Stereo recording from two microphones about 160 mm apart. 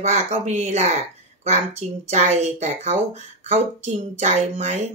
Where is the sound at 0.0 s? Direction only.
45° right (ahead or behind).